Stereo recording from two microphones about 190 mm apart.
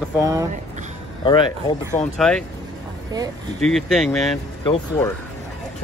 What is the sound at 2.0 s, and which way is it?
Speech, 5° left (ahead or behind).